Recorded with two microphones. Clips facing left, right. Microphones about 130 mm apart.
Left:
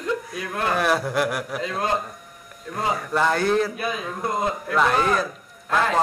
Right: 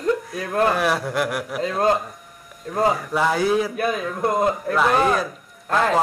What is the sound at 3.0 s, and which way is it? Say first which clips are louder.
Speech: right 1 dB; 5° right (ahead or behind).